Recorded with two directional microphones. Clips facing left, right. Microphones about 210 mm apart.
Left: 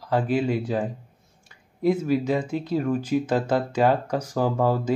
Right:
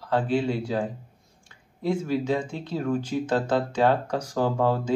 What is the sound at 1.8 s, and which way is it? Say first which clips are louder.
Speech: left 3 dB; 10° left (ahead or behind).